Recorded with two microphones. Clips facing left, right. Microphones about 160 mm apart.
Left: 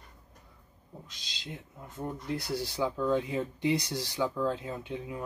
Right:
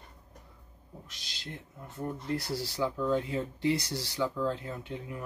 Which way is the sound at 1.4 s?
15° left (ahead or behind).